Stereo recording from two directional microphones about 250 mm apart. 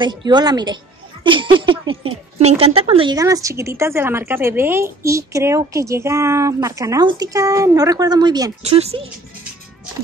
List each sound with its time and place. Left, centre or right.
0.0 s a woman's voice: centre